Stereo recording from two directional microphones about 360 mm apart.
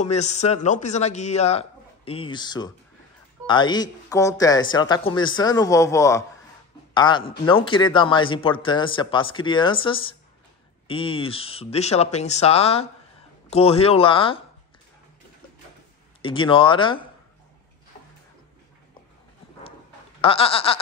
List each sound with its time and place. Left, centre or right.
0.0 s speech: centre
16.2 s speech: centre
20.2 s speech: centre